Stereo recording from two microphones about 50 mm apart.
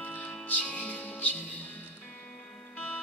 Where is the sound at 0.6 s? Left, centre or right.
Left.